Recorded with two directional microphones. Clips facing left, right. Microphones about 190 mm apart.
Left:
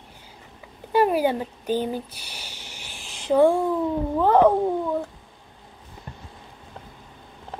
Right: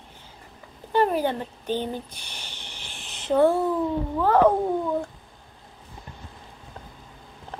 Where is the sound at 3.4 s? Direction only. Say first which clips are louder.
Left 2 dB; 15° left (ahead or behind).